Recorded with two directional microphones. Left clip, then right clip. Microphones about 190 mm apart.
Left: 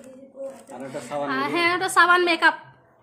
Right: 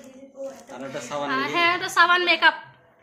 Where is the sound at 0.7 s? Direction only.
Centre (ahead or behind).